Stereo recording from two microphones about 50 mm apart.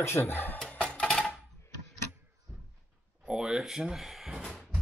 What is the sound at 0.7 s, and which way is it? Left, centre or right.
Music, left.